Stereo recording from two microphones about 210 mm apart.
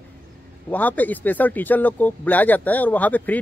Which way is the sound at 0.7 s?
10° left (ahead or behind).